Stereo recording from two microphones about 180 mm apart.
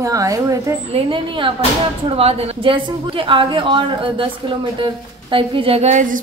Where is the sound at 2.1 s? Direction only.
30° right (ahead or behind).